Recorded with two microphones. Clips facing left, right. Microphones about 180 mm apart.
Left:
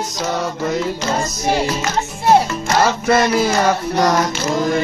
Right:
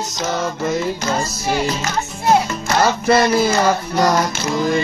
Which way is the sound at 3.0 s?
Centre (ahead or behind).